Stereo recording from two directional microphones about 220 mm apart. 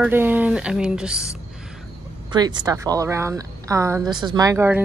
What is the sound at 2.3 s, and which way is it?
A woman's voice, 20° right (ahead or behind).